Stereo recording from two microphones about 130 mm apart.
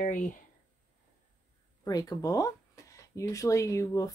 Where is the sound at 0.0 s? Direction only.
70° left (ahead or behind).